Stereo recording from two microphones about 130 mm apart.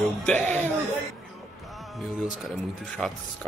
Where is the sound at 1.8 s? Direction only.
Centre (ahead or behind).